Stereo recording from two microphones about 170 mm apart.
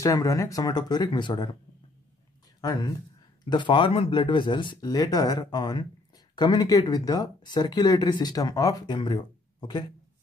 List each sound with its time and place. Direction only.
0.0 s speech: 20° left (ahead or behind)
2.6 s speech: 25° left (ahead or behind)